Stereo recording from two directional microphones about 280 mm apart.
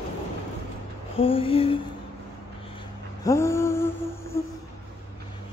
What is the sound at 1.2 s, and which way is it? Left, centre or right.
Speech, centre.